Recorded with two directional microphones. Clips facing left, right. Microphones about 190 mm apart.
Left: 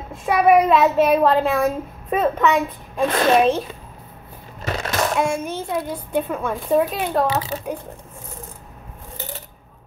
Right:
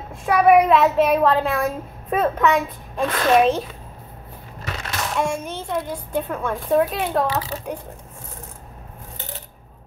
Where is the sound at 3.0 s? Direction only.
30° left (ahead or behind).